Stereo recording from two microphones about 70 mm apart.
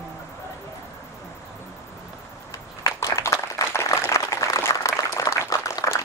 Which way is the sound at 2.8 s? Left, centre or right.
Left.